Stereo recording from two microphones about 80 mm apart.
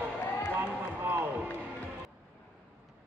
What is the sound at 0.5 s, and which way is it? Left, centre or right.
Music, right.